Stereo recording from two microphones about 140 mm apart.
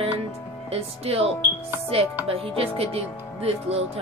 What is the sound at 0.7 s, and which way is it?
Speech, 45° right (ahead or behind).